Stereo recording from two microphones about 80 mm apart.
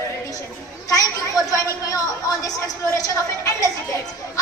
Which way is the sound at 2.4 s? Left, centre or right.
Left.